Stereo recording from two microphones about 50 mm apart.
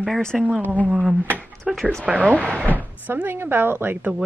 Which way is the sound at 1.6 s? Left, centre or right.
Centre.